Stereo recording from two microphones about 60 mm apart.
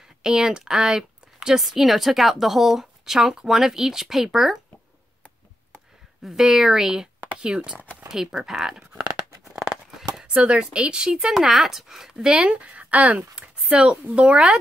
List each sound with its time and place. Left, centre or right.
0.2 s speech: centre
6.2 s speech: centre
9.6 s a sound: centre
10.2 s speech: centre